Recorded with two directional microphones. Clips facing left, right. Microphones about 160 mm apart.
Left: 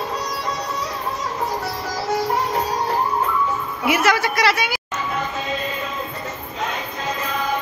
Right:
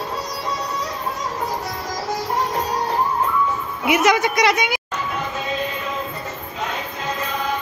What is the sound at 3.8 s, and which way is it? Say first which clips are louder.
A woman's voice: right 2 dB; 20° right (ahead or behind).